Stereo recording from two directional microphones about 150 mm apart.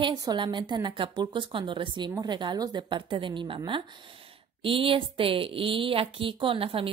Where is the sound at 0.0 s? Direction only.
25° right (ahead or behind).